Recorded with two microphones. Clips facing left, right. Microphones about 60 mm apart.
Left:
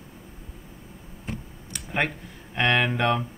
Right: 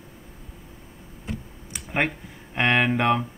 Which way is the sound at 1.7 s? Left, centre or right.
Centre.